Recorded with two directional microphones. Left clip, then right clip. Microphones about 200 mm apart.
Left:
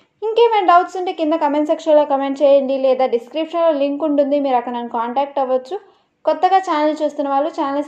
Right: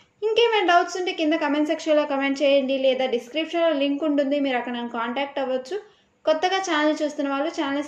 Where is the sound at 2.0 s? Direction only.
30° right (ahead or behind).